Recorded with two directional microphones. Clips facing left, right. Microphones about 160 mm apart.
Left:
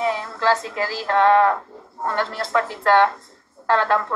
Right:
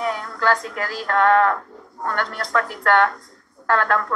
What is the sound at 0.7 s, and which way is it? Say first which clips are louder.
Speech: left 2 dB; 25° left (ahead or behind).